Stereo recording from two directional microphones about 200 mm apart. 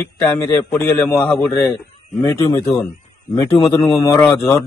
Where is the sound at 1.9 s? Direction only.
25° left (ahead or behind).